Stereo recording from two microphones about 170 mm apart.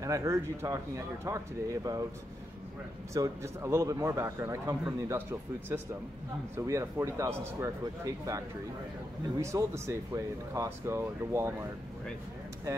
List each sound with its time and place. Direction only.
0.0 s speech: 20° right (ahead or behind)
3.1 s speech: 15° right (ahead or behind)
9.4 s speech: 15° right (ahead or behind)